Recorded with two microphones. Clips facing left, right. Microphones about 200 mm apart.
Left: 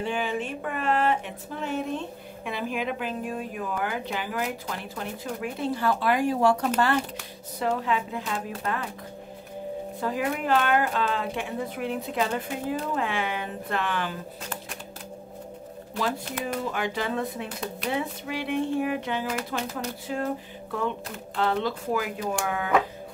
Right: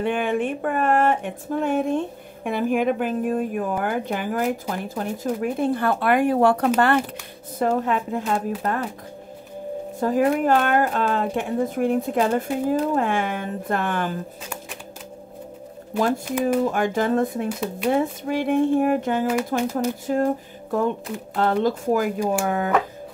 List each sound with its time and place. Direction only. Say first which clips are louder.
0.0 s speech: right 6 dB; 55° right (ahead or behind)
7.5 s speech: right 5 dB; 45° right (ahead or behind)
9.9 s speech: right 9 dB; 45° right (ahead or behind)
16.6 s speech: right 7 dB; 45° right (ahead or behind)